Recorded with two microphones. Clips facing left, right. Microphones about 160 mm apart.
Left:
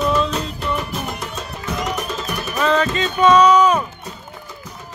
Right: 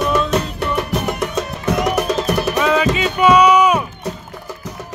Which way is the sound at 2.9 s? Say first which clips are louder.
Left 1 dB; 10° right (ahead or behind).